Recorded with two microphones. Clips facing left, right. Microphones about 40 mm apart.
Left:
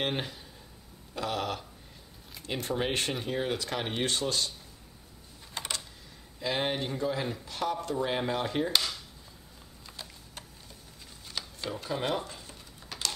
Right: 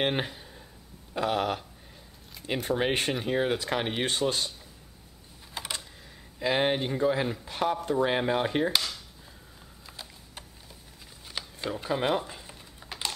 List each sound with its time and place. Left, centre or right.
0.0 s speech: centre
1.1 s chopping: centre
2.4 s speech: centre
5.5 s typing: centre
6.4 s speech: centre
7.4 s chopping: right
8.7 s a sound: centre
12.3 s typing: centre